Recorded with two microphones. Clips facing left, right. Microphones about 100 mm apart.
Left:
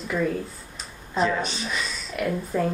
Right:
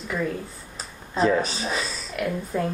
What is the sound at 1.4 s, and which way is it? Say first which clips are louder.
Speech: right 2 dB; 40° right (ahead or behind).